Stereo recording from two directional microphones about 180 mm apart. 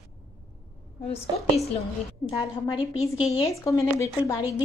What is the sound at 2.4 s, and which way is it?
Speech, 30° left (ahead or behind).